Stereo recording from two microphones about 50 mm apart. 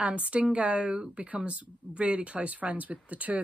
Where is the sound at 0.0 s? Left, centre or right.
Right.